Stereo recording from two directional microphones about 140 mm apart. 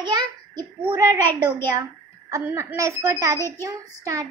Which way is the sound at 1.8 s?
20° right (ahead or behind).